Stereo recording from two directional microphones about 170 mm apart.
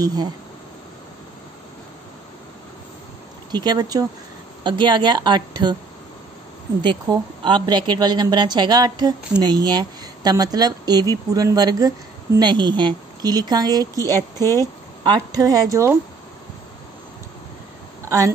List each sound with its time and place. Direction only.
0.0 s a woman's voice: 20° right (ahead or behind)
3.5 s a woman's voice: 25° right (ahead or behind)
6.8 s a woman's voice: 25° right (ahead or behind)
15.0 s a woman's voice: 20° right (ahead or behind)
18.0 s speech: 20° right (ahead or behind)